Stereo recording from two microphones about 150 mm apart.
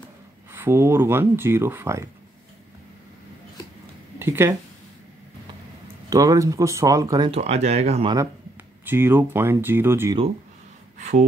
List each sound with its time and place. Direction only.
0.5 s speech: 15° right (ahead or behind)
4.2 s speech: 15° right (ahead or behind)
6.0 s speech: 25° right (ahead or behind)
7.2 s speech: 45° right (ahead or behind)
8.8 s speech: 15° right (ahead or behind)
11.0 s a sound: 55° right (ahead or behind)